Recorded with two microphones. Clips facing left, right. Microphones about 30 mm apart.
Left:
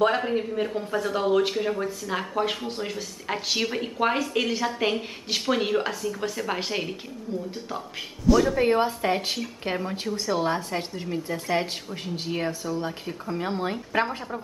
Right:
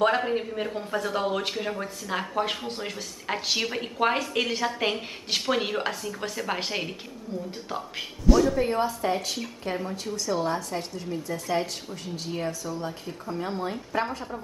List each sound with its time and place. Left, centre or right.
0.0 s speech: centre
8.5 s a woman's voice: left